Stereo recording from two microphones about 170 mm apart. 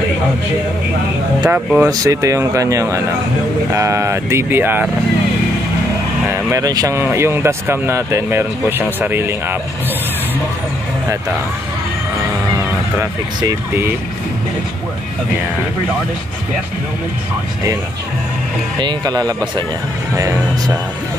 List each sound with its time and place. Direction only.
1.5 s speech: 10° right (ahead or behind)
6.3 s speech: 20° right (ahead or behind)
13.4 s speech: 15° right (ahead or behind)
18.8 s speech: 25° right (ahead or behind)